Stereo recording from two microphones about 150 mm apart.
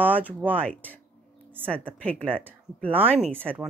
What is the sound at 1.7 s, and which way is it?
Speech, 10° left (ahead or behind).